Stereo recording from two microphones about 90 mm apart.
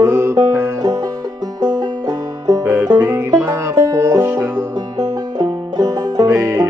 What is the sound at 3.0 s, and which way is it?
Music, 25° right (ahead or behind).